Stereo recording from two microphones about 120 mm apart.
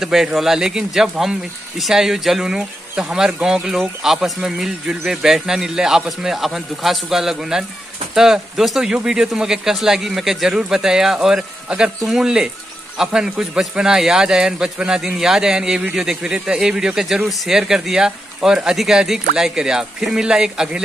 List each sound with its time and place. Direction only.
0.0 s a man's voice: 5° right (ahead or behind)